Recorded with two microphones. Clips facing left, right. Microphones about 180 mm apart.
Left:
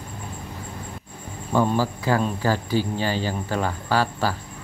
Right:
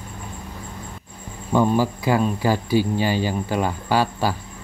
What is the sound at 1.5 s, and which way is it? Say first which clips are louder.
Speech: right 3 dB; 15° right (ahead or behind).